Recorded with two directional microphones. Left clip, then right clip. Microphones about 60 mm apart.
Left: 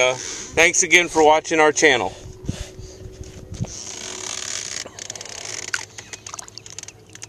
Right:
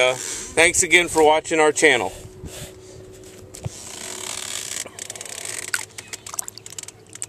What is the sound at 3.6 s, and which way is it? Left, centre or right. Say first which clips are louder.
Mechanisms: left 3 dB; left.